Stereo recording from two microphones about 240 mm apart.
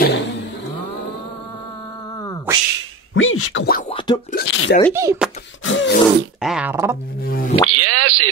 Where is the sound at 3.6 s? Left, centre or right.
Left.